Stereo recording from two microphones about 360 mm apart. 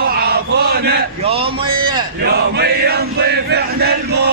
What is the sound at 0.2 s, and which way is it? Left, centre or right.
Chant, right.